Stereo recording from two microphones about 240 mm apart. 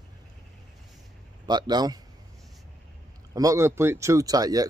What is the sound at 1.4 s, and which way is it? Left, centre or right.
Speech, centre.